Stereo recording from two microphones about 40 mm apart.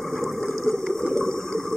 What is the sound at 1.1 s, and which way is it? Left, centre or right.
Water, centre.